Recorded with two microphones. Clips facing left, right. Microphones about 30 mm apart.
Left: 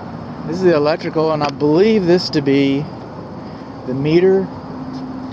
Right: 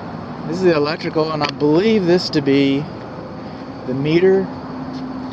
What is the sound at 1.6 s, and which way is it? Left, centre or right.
Speech, centre.